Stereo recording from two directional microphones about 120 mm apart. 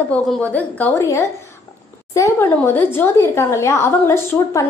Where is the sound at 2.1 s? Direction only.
25° left (ahead or behind).